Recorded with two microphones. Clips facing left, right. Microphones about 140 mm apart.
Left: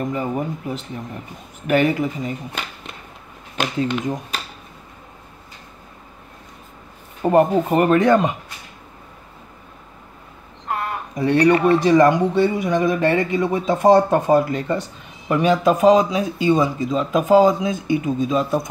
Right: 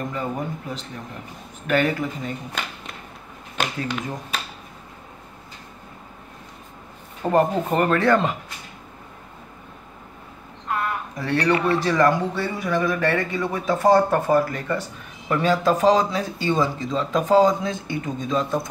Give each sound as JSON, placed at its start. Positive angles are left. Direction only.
{"t": 0.0, "sound": "speech", "side_deg": 15}
{"t": 7.2, "sound": "speech", "side_deg": 10}
{"t": 10.7, "sound": "speech", "side_deg": 25}